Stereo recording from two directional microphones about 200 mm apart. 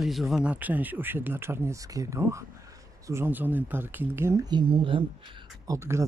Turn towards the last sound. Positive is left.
turn(degrees=-15)  # may be behind; listen again after turning